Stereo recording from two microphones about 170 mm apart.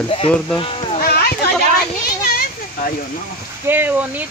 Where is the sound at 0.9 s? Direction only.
65° left (ahead or behind).